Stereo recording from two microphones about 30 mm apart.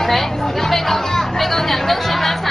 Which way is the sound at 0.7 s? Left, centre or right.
Centre.